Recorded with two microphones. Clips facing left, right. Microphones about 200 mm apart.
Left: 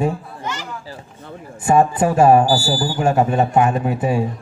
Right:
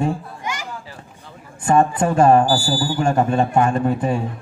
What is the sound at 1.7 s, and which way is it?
Speech, 5° left (ahead or behind).